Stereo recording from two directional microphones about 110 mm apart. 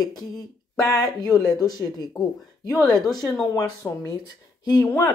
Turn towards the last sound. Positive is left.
turn(degrees=25)  # may be behind; listen again after turning